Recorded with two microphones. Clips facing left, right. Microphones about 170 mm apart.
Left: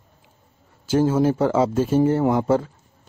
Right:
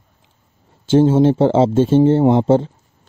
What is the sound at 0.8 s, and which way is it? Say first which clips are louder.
Speech: right 6 dB; 25° right (ahead or behind).